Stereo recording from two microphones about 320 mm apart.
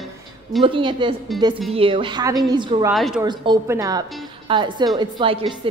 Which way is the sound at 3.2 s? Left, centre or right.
Centre.